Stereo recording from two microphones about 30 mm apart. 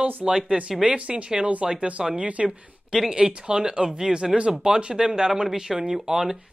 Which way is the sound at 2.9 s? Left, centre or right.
Centre.